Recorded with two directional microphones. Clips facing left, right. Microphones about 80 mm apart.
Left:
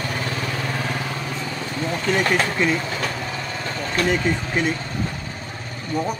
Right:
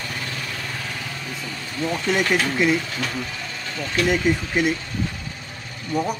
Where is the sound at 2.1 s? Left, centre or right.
Left.